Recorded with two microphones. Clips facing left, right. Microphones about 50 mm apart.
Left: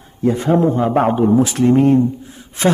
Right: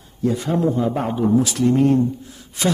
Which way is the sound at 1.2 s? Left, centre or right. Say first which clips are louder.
Left 4 dB; left.